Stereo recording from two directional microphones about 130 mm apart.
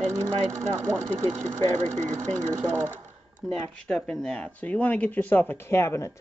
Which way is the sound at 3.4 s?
5° left (ahead or behind).